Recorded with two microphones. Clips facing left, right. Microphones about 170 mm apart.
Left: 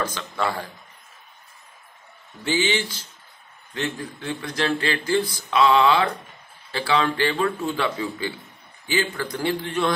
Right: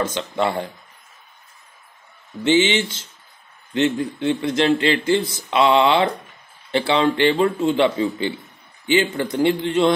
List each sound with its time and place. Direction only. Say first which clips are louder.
0.0 s a man's voice: right 4 dB; 25° right (ahead or behind)
2.4 s a man's voice: right 6 dB; 25° right (ahead or behind)